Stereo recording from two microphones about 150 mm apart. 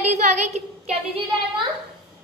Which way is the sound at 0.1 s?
50° right (ahead or behind).